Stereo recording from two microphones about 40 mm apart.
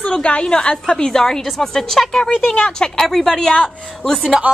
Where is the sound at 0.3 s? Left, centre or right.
Left.